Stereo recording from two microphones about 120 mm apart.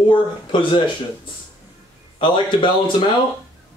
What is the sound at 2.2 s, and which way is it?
Speech, 40° left (ahead or behind).